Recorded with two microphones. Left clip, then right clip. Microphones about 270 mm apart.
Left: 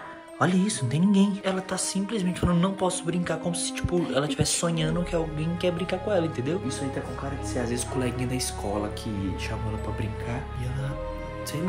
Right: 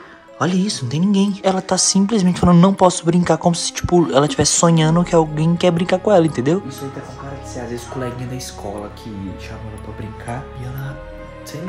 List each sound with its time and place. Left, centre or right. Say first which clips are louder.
0.4 s speech: right 5 dB; centre
1.4 s speech: right 12 dB; centre